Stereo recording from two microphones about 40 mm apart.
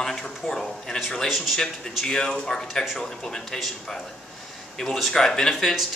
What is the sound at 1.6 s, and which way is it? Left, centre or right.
Speech, centre.